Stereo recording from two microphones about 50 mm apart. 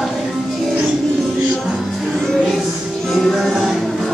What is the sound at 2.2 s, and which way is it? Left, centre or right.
Music, centre.